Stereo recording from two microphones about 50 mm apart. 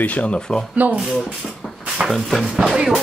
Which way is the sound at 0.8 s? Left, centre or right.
Right.